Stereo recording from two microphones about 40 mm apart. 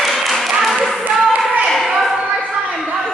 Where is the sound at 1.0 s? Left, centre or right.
Right.